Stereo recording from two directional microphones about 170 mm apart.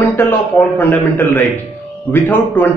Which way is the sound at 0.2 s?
10° left (ahead or behind).